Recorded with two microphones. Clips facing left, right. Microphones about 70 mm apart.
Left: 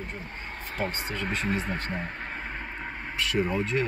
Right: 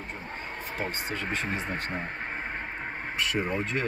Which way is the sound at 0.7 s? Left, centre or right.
Centre.